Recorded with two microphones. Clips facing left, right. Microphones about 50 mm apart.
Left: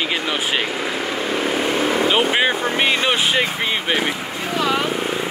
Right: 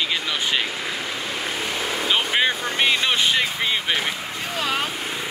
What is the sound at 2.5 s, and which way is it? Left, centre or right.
Speech, left.